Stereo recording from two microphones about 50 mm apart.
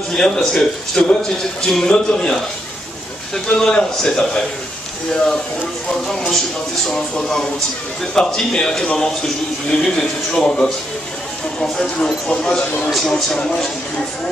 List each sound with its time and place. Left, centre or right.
0.1 s a man's voice: centre
3.4 s a man's voice: centre
6.0 s a man's voice: centre